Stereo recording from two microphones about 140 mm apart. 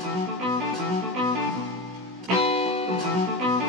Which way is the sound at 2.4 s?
45° left (ahead or behind).